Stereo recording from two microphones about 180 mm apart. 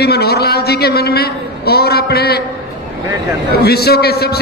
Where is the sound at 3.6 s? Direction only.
60° left (ahead or behind).